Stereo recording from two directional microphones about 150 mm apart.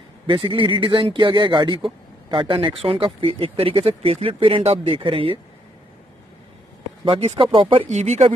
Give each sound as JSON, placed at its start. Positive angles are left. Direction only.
{"t": 0.3, "sound": "speech", "side_deg": -35}
{"t": 7.1, "sound": "speech", "side_deg": -40}
{"t": 7.9, "sound": "speech", "side_deg": -50}